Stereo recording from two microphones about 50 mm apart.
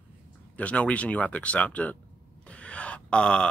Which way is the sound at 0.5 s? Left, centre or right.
Left.